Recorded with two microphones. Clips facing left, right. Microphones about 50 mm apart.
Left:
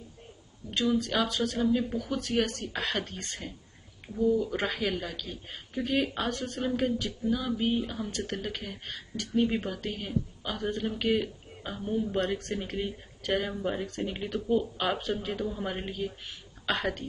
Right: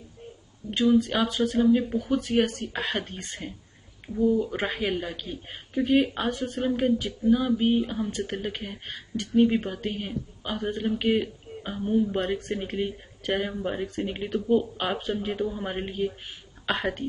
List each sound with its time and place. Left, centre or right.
0.7 s speech: right